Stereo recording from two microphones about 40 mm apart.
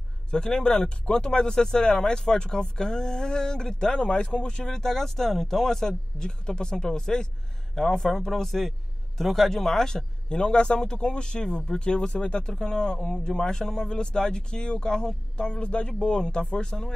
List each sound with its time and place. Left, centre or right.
0.3 s speech: centre